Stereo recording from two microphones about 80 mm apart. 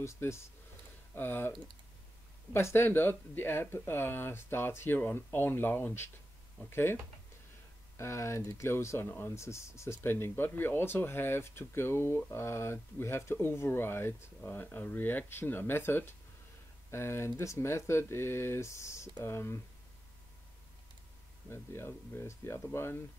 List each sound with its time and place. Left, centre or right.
0.0 s speech: left
2.5 s speech: left
8.0 s speech: left
21.5 s speech: left